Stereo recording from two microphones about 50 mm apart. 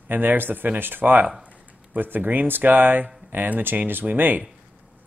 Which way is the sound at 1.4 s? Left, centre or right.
Right.